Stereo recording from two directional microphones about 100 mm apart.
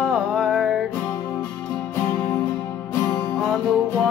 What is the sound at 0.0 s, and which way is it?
Music, centre (ahead or behind).